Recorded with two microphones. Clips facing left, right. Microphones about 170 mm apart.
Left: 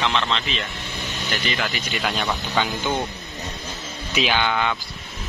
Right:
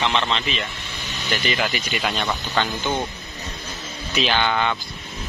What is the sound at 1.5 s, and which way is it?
Speech, 20° right (ahead or behind).